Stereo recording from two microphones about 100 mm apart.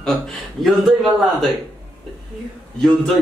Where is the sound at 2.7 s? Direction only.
5° left (ahead or behind).